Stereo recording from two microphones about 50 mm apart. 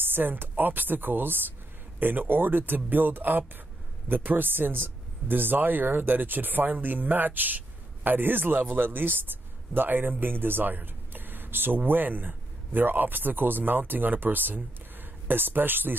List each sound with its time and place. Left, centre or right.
0.0 s speech: right